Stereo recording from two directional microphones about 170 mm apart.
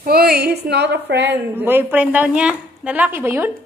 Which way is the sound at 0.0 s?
65° right (ahead or behind).